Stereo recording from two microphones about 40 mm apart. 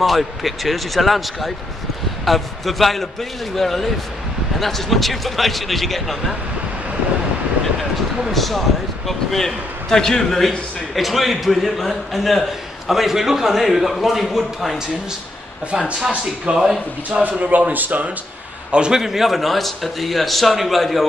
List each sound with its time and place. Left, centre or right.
0.0 s a man's voice: centre
8.3 s a man's voice: centre
11.0 s a man's voice: centre
16.5 s speech: centre
17.2 s speech: right
18.7 s a man's voice: right
18.9 s a man's voice: centre